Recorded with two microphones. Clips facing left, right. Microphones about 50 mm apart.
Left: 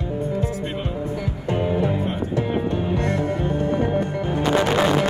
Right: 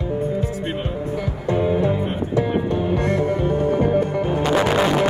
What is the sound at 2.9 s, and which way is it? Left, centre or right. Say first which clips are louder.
Music: right 3 dB; right.